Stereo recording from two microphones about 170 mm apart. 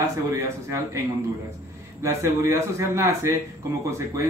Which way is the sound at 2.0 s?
15° right (ahead or behind).